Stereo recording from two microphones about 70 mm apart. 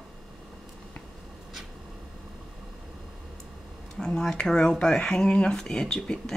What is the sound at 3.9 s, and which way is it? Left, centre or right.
Speech, centre.